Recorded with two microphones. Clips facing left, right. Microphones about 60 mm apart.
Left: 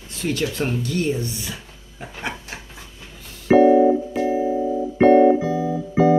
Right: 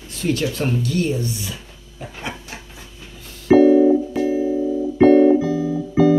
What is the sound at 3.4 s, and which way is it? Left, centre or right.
Music, left.